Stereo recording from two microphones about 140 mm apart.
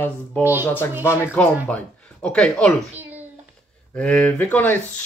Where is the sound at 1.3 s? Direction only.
10° left (ahead or behind).